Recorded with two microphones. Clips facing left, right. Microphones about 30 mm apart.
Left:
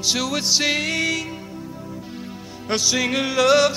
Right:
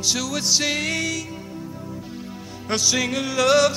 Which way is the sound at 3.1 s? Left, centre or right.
Left.